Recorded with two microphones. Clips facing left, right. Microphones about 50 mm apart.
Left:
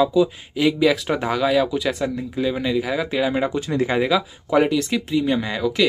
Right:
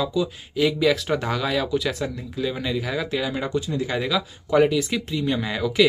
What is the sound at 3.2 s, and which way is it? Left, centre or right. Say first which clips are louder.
Speech: left 4 dB; centre.